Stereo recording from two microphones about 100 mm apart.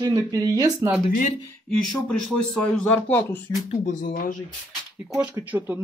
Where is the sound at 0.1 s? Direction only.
35° right (ahead or behind).